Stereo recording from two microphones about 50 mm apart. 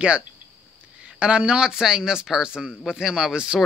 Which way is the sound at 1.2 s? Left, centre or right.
Right.